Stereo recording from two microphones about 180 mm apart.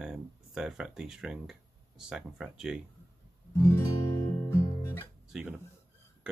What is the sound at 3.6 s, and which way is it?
Guitar, 15° left (ahead or behind).